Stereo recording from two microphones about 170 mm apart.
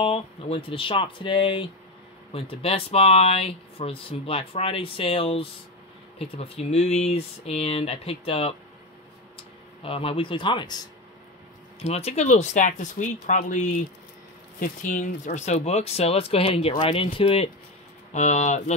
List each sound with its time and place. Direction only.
0.0 s speech: 35° left (ahead or behind)
9.8 s speech: 30° left (ahead or behind)
11.8 s speech: 40° left (ahead or behind)